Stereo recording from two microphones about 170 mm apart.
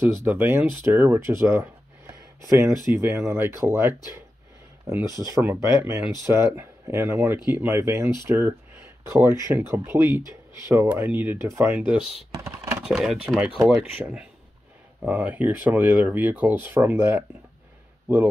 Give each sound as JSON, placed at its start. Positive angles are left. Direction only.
{"t": 0.0, "sound": "speech", "side_deg": -10}
{"t": 12.3, "sound": "computer keyboard", "side_deg": -15}
{"t": 12.8, "sound": "speech", "side_deg": 0}